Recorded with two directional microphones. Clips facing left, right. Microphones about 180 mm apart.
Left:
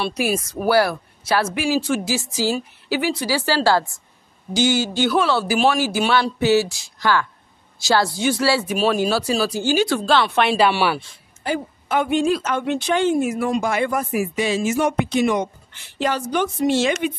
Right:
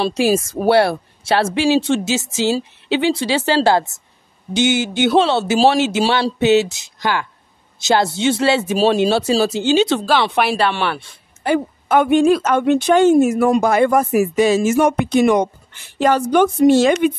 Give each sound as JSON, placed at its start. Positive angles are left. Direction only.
{"t": 0.0, "sound": "speech", "side_deg": -25}
{"t": 10.6, "sound": "speech", "side_deg": 10}
{"t": 11.0, "sound": "a woman's voice", "side_deg": -60}